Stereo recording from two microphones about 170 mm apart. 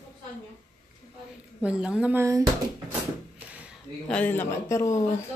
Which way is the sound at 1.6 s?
5° right (ahead or behind).